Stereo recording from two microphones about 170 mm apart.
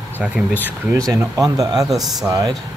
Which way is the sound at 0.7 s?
20° right (ahead or behind).